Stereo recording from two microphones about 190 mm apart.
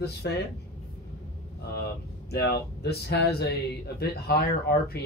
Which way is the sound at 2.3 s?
60° left (ahead or behind).